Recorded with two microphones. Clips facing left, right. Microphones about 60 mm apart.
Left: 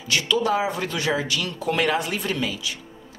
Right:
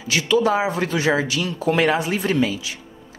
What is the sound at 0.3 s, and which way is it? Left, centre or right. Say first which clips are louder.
Speech: right 4 dB; right.